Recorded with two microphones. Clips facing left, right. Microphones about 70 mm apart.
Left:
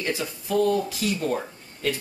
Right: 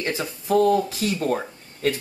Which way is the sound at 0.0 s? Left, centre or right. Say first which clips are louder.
Right 1 dB; right.